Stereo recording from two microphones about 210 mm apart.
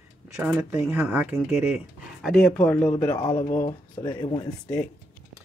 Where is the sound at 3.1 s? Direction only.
20° left (ahead or behind).